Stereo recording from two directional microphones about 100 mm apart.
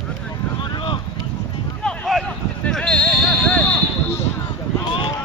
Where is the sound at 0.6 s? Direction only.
55° left (ahead or behind).